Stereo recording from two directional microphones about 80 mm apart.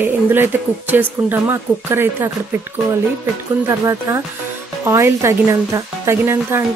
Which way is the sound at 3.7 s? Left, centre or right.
Right.